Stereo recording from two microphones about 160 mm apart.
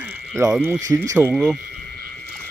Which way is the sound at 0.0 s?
15° right (ahead or behind).